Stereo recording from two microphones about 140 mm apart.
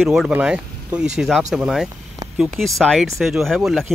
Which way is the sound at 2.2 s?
25° right (ahead or behind).